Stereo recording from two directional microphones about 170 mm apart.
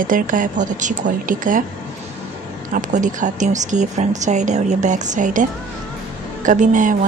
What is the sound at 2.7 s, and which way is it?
Speech, 45° right (ahead or behind).